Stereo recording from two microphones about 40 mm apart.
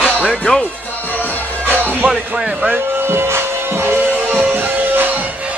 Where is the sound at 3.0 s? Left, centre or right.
Right.